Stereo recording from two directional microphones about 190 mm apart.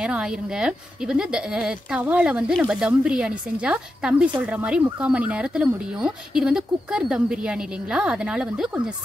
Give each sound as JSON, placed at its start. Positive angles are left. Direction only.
{"t": 0.0, "sound": "speech", "side_deg": -5}